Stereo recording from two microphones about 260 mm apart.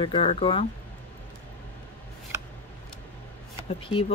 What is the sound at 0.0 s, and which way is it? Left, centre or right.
Speech, left.